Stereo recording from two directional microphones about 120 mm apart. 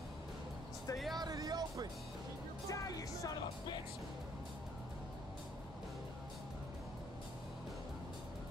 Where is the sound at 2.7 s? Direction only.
25° left (ahead or behind).